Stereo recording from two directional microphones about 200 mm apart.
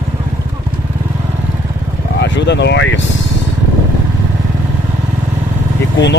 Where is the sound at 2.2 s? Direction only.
60° left (ahead or behind).